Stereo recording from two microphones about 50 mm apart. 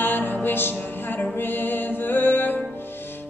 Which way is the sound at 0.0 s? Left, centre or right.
Left.